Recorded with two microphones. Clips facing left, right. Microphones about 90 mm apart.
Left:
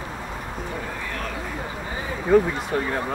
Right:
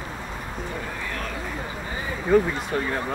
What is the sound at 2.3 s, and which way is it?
Speech, 5° left (ahead or behind).